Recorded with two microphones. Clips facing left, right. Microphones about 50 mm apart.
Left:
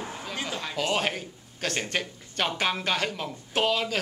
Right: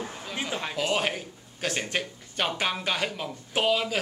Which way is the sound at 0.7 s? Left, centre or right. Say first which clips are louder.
Even; centre.